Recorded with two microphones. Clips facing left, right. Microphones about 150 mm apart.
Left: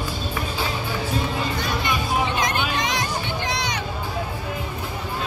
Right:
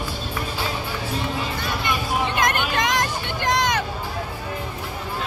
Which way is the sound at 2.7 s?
50° right (ahead or behind).